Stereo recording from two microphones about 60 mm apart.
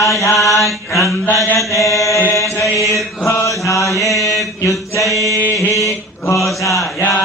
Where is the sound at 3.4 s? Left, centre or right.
Left.